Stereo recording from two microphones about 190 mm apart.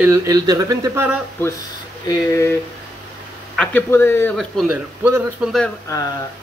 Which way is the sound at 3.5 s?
10° left (ahead or behind).